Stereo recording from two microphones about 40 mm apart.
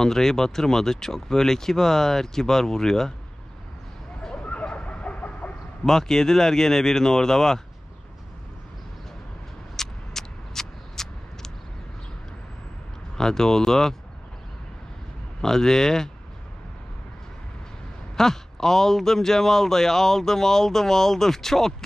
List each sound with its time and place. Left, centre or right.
0.0 s a man's voice: centre
4.6 s chicken: left
5.9 s a man's voice: centre
9.8 s a sound: centre
13.2 s a man's voice: centre
15.4 s a man's voice: centre
18.1 s a man's voice: centre